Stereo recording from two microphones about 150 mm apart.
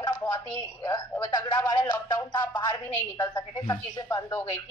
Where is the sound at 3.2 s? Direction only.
20° left (ahead or behind).